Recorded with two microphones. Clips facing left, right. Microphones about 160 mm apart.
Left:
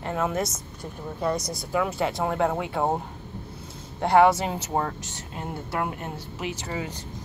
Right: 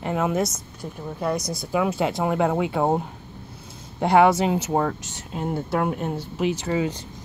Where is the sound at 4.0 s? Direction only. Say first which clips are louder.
Right 2 dB; 15° right (ahead or behind).